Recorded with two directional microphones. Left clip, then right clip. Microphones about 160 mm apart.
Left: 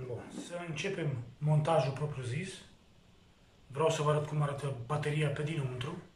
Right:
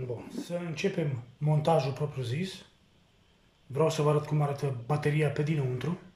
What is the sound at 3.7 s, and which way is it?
Speech, 25° right (ahead or behind).